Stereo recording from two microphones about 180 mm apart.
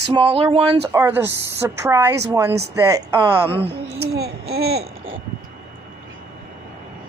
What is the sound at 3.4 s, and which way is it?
Speech, 30° right (ahead or behind).